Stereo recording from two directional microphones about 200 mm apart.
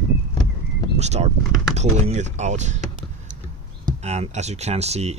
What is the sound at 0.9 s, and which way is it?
Speech, 35° right (ahead or behind).